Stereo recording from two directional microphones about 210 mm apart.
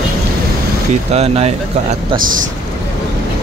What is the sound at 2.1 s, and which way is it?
Speech, 40° right (ahead or behind).